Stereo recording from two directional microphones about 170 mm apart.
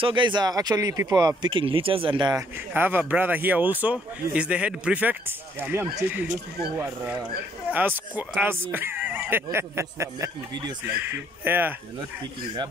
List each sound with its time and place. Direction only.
0.0 s speech: 30° right (ahead or behind)
2.7 s speech: 10° right (ahead or behind)